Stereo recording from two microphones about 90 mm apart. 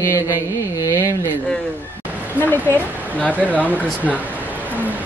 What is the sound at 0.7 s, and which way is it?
Speech, 35° right (ahead or behind).